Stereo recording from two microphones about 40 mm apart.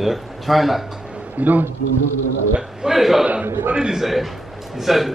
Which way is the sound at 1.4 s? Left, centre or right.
Right.